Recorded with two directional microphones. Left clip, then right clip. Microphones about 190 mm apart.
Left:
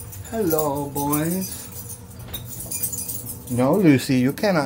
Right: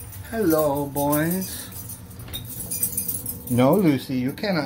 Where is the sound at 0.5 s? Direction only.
Centre (ahead or behind).